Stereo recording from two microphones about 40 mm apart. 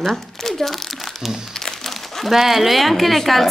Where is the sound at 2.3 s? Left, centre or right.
Centre.